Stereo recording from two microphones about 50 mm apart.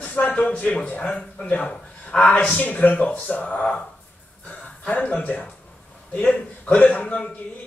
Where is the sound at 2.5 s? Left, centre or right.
Left.